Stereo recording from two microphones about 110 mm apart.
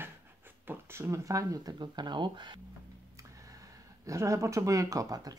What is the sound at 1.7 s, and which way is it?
Speech, 40° right (ahead or behind).